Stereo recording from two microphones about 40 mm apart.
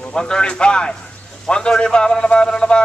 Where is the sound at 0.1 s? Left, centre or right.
Centre.